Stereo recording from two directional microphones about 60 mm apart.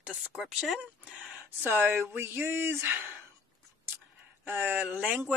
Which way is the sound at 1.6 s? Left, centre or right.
Right.